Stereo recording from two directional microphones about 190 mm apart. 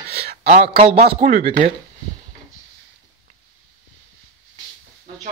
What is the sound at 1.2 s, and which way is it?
Speech, 45° right (ahead or behind).